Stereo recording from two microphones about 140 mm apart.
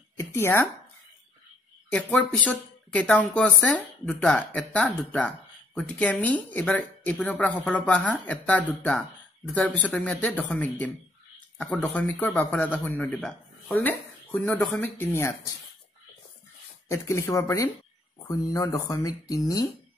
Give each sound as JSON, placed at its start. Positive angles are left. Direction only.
{"t": 0.2, "sound": "speech", "side_deg": 20}
{"t": 1.9, "sound": "speech", "side_deg": 10}
{"t": 16.9, "sound": "speech", "side_deg": 20}